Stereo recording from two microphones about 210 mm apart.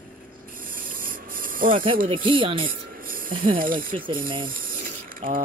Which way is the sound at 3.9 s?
25° right (ahead or behind).